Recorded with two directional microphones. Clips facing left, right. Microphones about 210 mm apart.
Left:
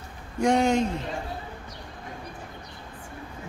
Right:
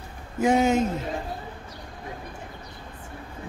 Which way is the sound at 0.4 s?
5° right (ahead or behind).